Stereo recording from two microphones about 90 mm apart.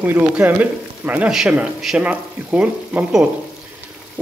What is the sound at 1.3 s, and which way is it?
A man's voice, 5° right (ahead or behind).